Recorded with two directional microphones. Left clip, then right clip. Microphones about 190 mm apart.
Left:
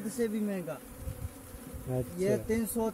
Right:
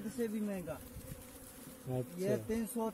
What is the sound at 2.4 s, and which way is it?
Speech, 5° left (ahead or behind).